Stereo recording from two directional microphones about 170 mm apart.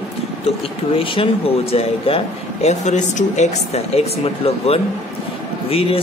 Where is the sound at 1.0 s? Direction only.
35° left (ahead or behind).